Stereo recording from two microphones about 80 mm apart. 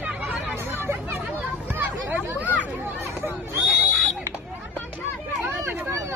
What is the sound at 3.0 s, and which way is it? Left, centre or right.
Chatter, right.